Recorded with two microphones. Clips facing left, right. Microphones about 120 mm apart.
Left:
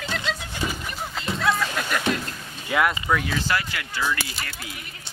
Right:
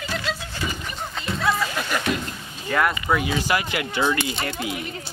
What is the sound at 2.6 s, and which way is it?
Speech, 5° left (ahead or behind).